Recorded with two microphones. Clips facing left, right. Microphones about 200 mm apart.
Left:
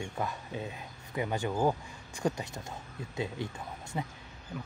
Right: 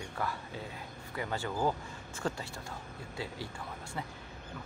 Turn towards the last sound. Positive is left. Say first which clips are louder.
# left 3 dB
turn(degrees=20)  # may be behind; listen again after turning